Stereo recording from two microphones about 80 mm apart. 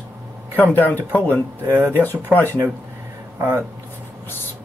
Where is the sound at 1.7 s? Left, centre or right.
Right.